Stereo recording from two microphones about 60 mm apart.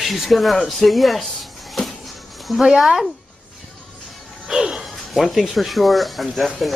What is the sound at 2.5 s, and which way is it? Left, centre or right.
Speech, centre.